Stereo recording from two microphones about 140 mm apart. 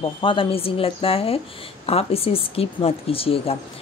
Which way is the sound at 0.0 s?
35° left (ahead or behind).